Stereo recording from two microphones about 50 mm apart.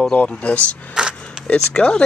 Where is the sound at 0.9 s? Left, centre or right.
Centre.